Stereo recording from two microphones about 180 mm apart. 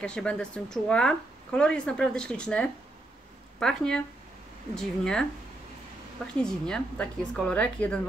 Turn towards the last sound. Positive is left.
turn(degrees=5)  # may be behind; listen again after turning